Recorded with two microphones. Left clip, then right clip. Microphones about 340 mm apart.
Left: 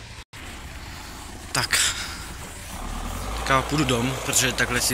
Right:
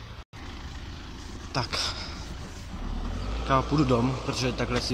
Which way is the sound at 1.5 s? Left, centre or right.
Centre.